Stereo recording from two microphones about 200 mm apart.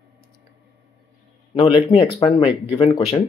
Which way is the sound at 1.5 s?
25° left (ahead or behind).